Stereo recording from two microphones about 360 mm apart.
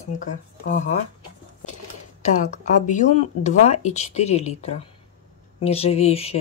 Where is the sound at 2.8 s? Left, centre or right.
Centre.